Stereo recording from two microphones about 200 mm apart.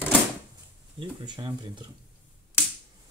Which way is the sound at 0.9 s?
20° right (ahead or behind).